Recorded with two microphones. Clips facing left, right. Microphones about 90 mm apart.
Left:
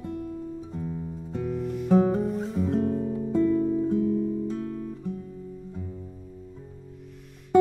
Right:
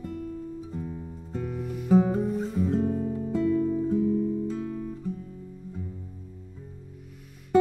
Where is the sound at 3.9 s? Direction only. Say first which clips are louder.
Even; centre (ahead or behind).